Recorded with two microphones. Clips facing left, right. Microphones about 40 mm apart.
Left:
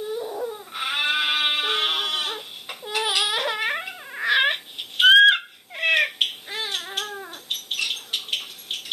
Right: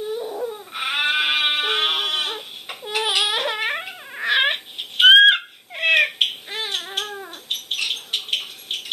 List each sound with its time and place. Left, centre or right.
0.3 s a sound: centre
0.7 s goat: centre
4.1 s crying: centre
7.4 s bird: centre